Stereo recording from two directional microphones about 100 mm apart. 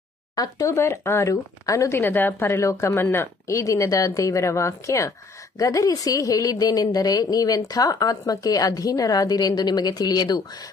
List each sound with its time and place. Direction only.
0.4 s a woman's voice: 30° left (ahead or behind)